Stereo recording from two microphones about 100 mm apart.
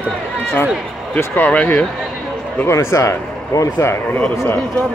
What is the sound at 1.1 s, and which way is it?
Speech, 20° left (ahead or behind).